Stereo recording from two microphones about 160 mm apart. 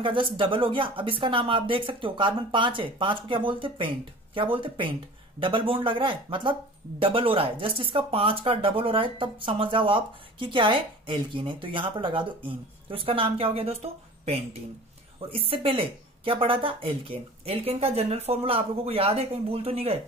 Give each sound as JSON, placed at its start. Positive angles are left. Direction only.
{"t": 0.0, "sound": "speech", "side_deg": -30}